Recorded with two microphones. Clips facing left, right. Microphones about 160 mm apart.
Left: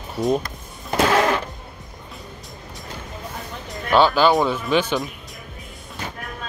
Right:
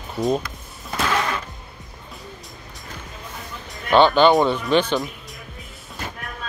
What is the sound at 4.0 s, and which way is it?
Speech, 5° left (ahead or behind).